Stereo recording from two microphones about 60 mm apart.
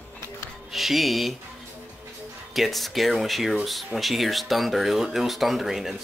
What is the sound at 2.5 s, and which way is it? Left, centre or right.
Speech, centre.